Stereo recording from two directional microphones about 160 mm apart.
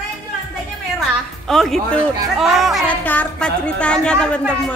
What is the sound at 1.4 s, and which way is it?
A woman's voice, centre (ahead or behind).